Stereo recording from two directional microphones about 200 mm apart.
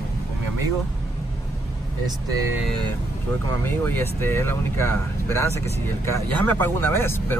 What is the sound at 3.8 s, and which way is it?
Speech, 10° left (ahead or behind).